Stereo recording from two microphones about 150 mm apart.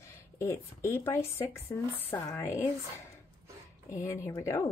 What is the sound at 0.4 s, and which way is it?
Speech, 20° left (ahead or behind).